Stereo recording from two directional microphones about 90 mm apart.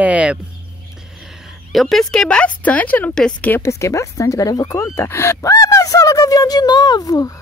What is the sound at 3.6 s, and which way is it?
Speech, 35° left (ahead or behind).